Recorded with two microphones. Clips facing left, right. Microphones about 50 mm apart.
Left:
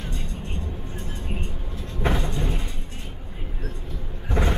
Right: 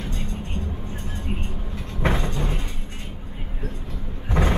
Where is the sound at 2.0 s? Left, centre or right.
Right.